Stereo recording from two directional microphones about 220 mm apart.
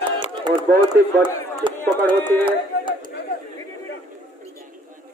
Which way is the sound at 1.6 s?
20° right (ahead or behind).